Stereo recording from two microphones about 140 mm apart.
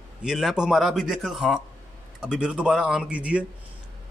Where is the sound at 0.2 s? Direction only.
5° right (ahead or behind).